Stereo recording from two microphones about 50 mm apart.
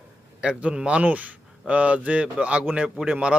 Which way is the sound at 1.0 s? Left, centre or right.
Right.